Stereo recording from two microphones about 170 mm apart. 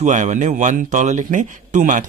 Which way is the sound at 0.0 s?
45° right (ahead or behind).